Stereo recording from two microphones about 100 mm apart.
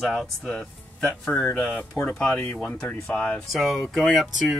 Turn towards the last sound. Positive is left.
turn(degrees=0)  # may be behind; listen again after turning